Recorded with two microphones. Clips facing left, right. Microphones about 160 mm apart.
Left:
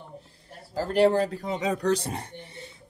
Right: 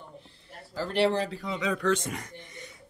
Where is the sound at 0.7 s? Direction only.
45° left (ahead or behind).